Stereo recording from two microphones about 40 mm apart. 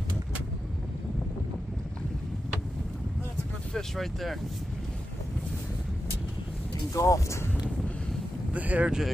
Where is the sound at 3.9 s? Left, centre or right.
Centre.